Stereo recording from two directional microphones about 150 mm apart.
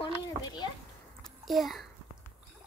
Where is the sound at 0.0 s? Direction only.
30° left (ahead or behind).